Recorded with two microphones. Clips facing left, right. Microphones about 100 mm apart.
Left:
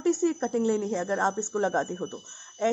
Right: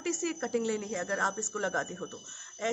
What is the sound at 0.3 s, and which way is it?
Speech, 35° left (ahead or behind).